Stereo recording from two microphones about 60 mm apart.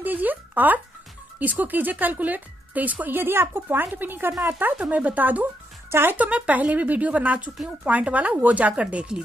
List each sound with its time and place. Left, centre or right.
0.0 s a sound: right
1.4 s speech: right
4.7 s speech: right
5.9 s speech: right
6.1 s speech: right